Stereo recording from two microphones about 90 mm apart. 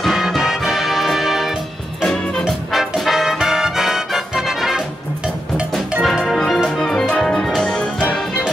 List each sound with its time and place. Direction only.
0.0 s music: centre (ahead or behind)
6.0 s music: centre (ahead or behind)